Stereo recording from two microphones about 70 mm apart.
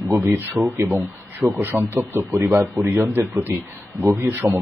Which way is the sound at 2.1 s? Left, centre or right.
Right.